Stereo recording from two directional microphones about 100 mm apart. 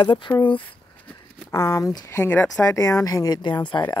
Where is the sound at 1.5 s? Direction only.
30° left (ahead or behind).